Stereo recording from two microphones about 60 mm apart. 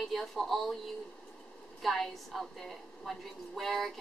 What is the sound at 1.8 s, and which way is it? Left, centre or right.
A woman's voice, centre.